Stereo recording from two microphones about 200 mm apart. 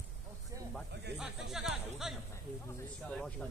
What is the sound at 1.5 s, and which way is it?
Speech, centre (ahead or behind).